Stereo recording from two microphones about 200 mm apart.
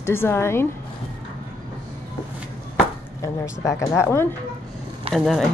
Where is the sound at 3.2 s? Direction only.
15° left (ahead or behind).